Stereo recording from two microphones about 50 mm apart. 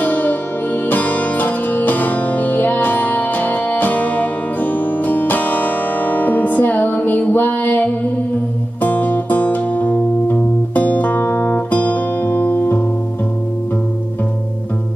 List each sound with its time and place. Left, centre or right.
0.0 s music: left